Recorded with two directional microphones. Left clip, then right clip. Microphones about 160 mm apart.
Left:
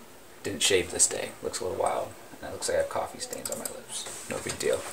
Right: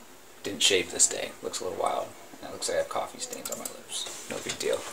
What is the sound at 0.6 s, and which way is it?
Speech, 20° left (ahead or behind).